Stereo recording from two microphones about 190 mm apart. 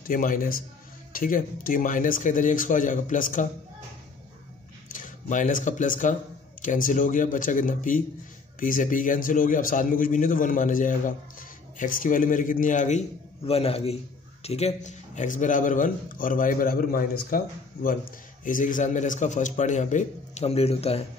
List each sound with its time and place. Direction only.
0.0 s a man's voice: 45° left (ahead or behind)
4.8 s a man's voice: 40° left (ahead or behind)